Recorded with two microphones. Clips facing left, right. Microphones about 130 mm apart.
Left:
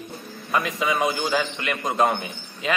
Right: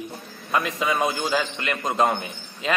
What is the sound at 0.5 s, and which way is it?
A man's voice, centre (ahead or behind).